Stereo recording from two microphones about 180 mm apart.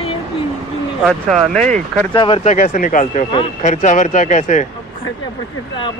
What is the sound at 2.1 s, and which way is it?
Speech, 25° left (ahead or behind).